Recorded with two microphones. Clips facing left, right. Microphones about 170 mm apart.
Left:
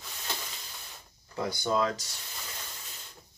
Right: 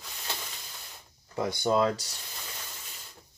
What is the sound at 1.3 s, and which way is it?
Speech, 25° right (ahead or behind).